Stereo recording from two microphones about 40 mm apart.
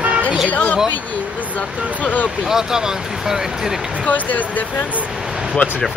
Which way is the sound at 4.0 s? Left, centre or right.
Left.